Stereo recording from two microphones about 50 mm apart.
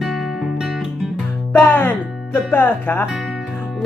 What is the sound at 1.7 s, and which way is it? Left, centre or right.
Music, left.